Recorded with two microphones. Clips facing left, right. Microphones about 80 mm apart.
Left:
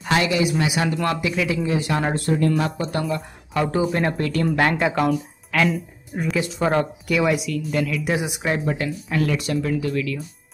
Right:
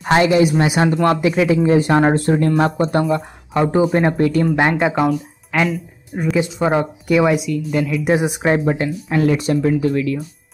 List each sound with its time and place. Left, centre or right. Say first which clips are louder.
0.0 s speech: right 7 dB; right; by 8.0 s centre
8.0 s speech: right 7 dB; right